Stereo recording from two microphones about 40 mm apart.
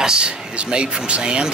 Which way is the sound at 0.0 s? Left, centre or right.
Right.